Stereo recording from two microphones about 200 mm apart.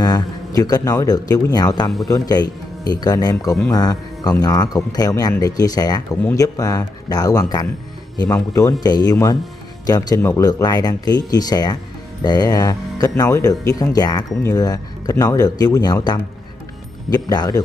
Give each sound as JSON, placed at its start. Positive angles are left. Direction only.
{"t": 0.0, "sound": "a man's voice", "side_deg": 20}